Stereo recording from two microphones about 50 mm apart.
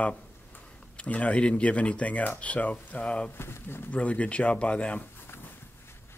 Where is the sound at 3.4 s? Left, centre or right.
Left.